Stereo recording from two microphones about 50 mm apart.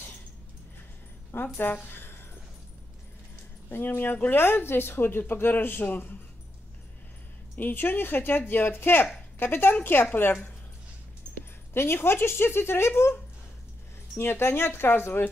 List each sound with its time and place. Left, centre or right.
1.3 s speech: left
3.6 s speech: left
7.5 s speech: left
11.7 s speech: left
14.1 s speech: left